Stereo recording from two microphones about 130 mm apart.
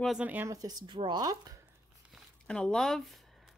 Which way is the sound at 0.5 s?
30° right (ahead or behind).